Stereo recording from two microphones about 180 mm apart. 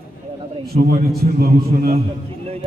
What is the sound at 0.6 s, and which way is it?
A man's voice, 60° right (ahead or behind).